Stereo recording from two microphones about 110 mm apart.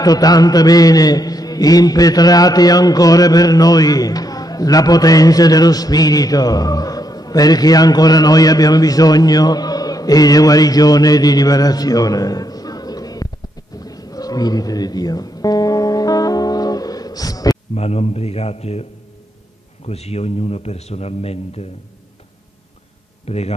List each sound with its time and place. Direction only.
0.0 s mantra: 35° left (ahead or behind)
13.7 s music: 35° left (ahead or behind)
17.7 s a man's voice: 70° left (ahead or behind)
19.9 s a man's voice: 70° left (ahead or behind)
23.2 s a man's voice: 70° left (ahead or behind)